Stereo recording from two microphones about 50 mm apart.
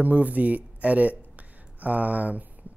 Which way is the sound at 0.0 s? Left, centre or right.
Right.